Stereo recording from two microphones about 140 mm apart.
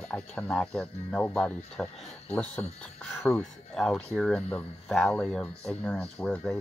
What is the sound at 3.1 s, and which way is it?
Speech, 15° left (ahead or behind).